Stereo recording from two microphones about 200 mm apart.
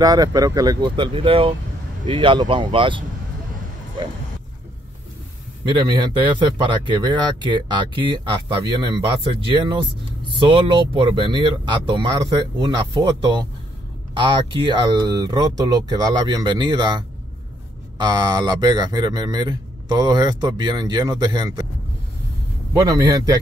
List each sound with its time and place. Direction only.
0.0 s speech: 20° right (ahead or behind)
5.7 s speech: 25° right (ahead or behind)
22.7 s speech: 15° right (ahead or behind)